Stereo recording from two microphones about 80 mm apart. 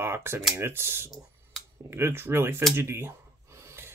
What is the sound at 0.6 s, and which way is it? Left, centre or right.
Speech, right.